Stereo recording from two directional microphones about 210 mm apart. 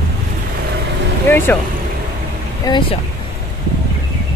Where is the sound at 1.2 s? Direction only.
10° left (ahead or behind).